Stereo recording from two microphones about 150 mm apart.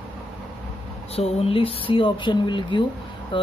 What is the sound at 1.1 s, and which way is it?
Speech, 40° left (ahead or behind).